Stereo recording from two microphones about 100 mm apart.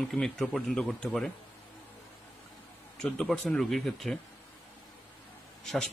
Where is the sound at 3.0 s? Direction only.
10° left (ahead or behind).